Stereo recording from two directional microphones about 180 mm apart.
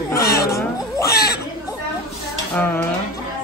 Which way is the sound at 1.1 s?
60° left (ahead or behind).